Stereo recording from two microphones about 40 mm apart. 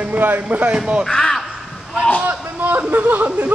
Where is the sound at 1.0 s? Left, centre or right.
Centre.